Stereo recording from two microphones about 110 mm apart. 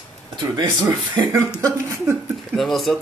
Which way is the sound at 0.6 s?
25° right (ahead or behind).